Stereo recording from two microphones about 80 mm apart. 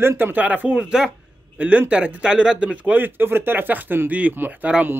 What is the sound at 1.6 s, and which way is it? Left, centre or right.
A man's voice, centre.